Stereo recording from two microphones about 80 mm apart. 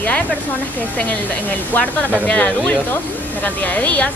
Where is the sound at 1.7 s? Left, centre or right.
Centre.